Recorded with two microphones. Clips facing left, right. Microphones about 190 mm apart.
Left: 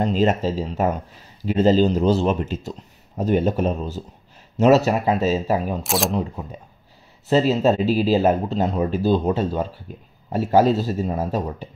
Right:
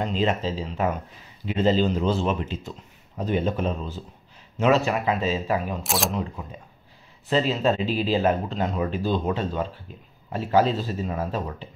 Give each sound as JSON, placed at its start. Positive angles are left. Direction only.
{"t": 0.0, "sound": "speech", "side_deg": 45}
{"t": 5.9, "sound": "speech", "side_deg": 0}
{"t": 7.2, "sound": "speech", "side_deg": 40}